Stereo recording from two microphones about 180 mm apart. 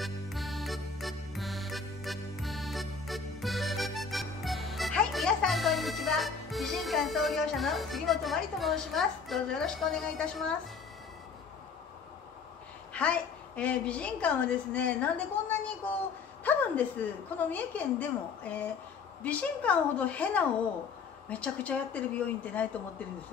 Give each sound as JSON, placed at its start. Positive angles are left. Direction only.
{"t": 0.0, "sound": "music", "side_deg": 0}
{"t": 12.9, "sound": "a woman's voice", "side_deg": 5}
{"t": 16.4, "sound": "a woman's voice", "side_deg": 10}